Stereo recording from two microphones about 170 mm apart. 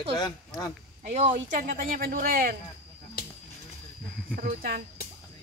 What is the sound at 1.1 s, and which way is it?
Speech, 45° right (ahead or behind).